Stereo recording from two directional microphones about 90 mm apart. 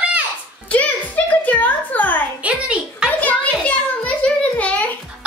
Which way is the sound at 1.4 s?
20° left (ahead or behind).